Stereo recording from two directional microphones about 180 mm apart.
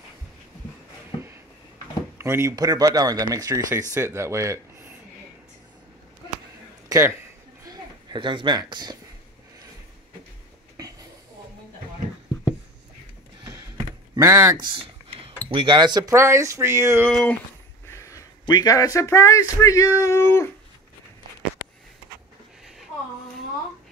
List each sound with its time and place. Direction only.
2.1 s speech: 15° right (ahead or behind)
6.9 s speech: 15° right (ahead or behind)
13.4 s a sound: 20° right (ahead or behind)
14.1 s speech: 20° right (ahead or behind)
17.0 s speech: 5° left (ahead or behind)
17.8 s speech: 15° left (ahead or behind)